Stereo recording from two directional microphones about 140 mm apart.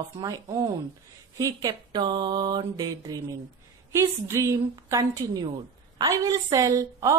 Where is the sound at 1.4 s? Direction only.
25° right (ahead or behind).